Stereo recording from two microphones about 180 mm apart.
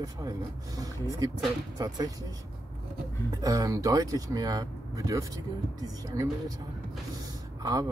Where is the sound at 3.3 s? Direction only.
20° right (ahead or behind).